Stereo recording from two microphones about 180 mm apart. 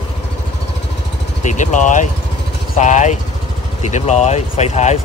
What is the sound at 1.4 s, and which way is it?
Speech, 45° left (ahead or behind).